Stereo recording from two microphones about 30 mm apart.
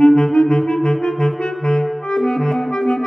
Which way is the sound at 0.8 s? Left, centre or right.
Left.